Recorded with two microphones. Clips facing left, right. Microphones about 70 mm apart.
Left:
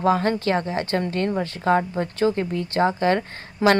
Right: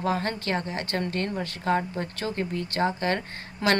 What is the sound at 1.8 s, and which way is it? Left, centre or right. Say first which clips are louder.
A woman's voice: left 9 dB; left.